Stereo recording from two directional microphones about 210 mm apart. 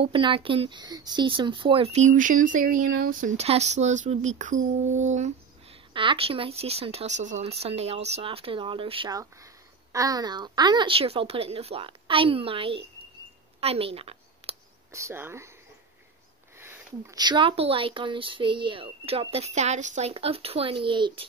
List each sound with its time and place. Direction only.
0.0 s speech: 25° right (ahead or behind)
13.6 s a sound: 30° right (ahead or behind)
14.9 s speech: 15° right (ahead or behind)
16.5 s speech: 10° right (ahead or behind)